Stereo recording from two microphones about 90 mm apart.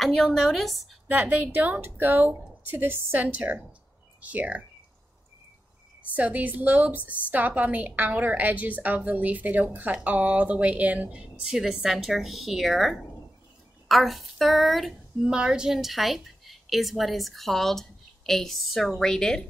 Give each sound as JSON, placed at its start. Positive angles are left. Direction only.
{"t": 0.0, "sound": "a woman's voice", "side_deg": 5}
{"t": 1.0, "sound": "a woman's voice", "side_deg": -20}
{"t": 6.1, "sound": "a woman's voice", "side_deg": -20}